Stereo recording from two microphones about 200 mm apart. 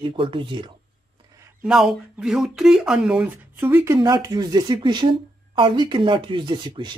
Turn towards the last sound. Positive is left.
turn(degrees=-25)  # may be behind; listen again after turning